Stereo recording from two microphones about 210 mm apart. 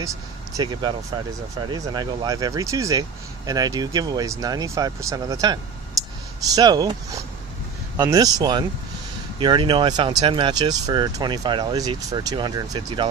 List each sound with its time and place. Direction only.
0.6 s speech: 20° right (ahead or behind)